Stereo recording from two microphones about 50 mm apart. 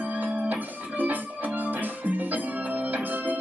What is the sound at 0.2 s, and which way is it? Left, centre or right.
Music, right.